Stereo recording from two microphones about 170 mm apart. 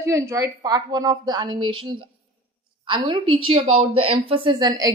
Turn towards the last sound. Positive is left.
turn(degrees=-25)  # may be behind; listen again after turning